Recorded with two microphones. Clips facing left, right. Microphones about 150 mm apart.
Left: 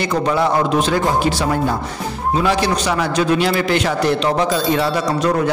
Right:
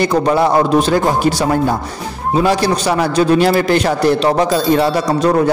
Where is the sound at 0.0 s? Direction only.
40° right (ahead or behind).